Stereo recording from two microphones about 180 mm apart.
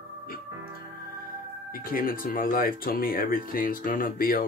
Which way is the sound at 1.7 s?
50° left (ahead or behind).